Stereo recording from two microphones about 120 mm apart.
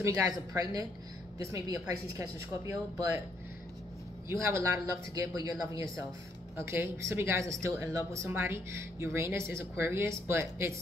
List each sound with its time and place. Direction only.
0.5 s a woman's voice: 30° right (ahead or behind)
4.3 s speech: 25° right (ahead or behind)